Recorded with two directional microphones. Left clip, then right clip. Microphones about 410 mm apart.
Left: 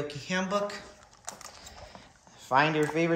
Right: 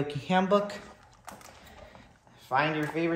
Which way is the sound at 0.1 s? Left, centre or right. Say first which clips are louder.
Right 8 dB; centre.